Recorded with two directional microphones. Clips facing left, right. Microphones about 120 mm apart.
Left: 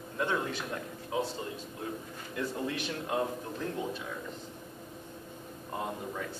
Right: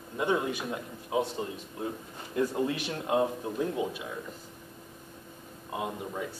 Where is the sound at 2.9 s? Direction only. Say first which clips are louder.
Right 4 dB; 20° right (ahead or behind).